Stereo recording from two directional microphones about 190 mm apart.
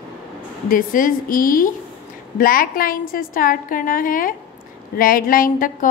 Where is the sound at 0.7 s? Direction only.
45° left (ahead or behind).